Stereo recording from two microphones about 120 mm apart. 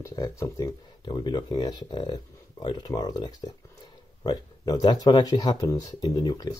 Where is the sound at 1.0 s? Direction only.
35° left (ahead or behind).